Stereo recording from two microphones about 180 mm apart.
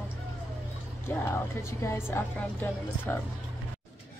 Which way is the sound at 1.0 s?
15° left (ahead or behind).